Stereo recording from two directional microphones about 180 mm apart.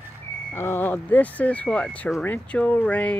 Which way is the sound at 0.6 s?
10° left (ahead or behind).